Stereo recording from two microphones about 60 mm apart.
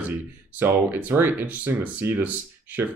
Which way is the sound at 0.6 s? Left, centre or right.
Right.